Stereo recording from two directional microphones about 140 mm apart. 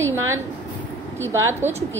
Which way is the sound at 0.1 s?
20° right (ahead or behind).